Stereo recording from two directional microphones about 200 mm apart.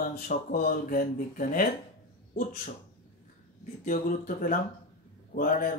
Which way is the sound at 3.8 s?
40° left (ahead or behind).